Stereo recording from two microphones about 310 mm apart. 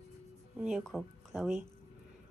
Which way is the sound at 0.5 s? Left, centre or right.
Centre.